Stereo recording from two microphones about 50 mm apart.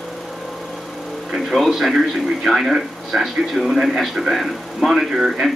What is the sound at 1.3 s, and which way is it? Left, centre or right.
A man's voice, centre.